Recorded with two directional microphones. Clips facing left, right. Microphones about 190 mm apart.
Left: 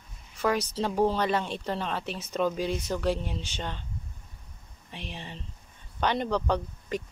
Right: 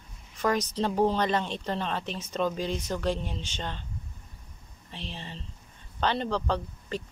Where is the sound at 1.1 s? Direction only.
10° left (ahead or behind).